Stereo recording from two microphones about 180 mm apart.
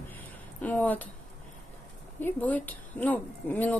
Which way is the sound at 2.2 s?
10° left (ahead or behind).